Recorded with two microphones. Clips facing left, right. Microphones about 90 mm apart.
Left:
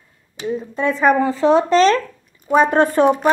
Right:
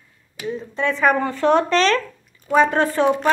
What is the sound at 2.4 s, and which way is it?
Speech, 20° left (ahead or behind).